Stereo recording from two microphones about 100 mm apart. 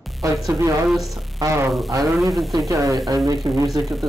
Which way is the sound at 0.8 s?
Centre (ahead or behind).